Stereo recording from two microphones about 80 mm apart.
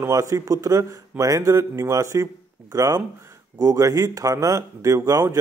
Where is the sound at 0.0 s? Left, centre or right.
Right.